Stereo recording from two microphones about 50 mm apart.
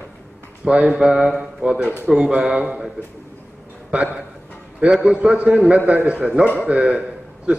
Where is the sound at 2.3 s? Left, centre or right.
Right.